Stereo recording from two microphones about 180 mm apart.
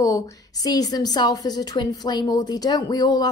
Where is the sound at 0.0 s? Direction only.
20° left (ahead or behind).